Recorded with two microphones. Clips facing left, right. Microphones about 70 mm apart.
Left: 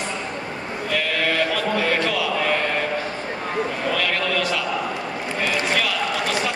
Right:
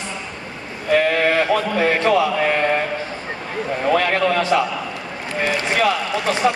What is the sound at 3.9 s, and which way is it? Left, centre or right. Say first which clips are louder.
A man's voice: right 7 dB; right.